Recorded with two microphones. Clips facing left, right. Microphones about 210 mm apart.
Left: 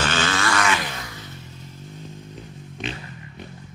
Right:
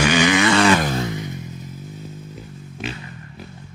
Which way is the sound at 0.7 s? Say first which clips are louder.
Right 8 dB; 45° right (ahead or behind).